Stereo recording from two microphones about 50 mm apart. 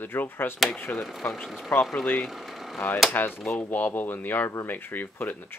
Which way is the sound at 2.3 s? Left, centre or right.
Centre.